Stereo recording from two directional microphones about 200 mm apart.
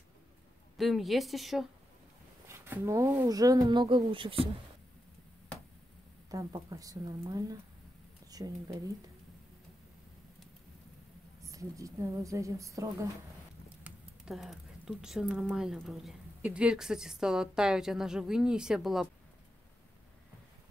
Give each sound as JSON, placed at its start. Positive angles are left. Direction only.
{"t": 0.7, "sound": "speech", "side_deg": 0}
{"t": 2.4, "sound": "speech", "side_deg": -15}
{"t": 6.3, "sound": "a woman's voice", "side_deg": -15}
{"t": 11.4, "sound": "a woman's voice", "side_deg": -15}
{"t": 13.8, "sound": "speech", "side_deg": 0}